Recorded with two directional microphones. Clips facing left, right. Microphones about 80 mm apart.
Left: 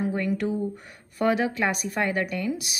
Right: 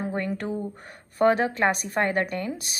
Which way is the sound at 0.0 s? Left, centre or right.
Right.